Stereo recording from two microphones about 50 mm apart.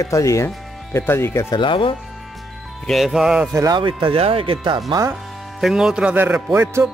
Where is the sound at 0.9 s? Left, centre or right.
Left.